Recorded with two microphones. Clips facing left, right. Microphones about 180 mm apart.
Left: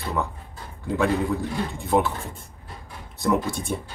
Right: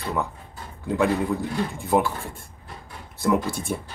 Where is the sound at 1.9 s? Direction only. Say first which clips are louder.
Even; 10° right (ahead or behind).